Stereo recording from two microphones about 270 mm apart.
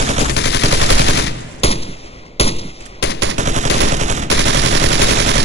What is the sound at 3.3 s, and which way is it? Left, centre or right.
Gunshot, right.